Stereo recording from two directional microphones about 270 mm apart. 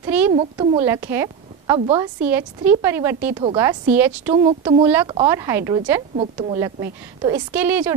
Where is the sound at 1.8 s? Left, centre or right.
Right.